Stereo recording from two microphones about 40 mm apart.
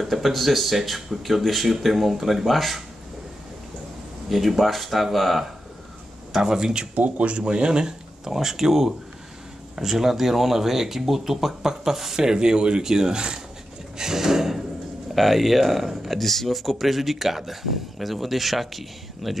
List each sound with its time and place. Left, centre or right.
0.0 s speech: centre
4.3 s speech: centre
6.3 s speech: centre
7.0 s speech: right
8.3 s speech: centre